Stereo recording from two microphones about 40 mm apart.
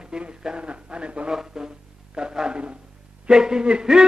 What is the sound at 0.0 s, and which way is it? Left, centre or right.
Speech, right.